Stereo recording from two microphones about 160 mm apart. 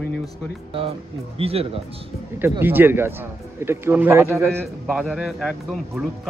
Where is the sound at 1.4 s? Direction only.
35° right (ahead or behind).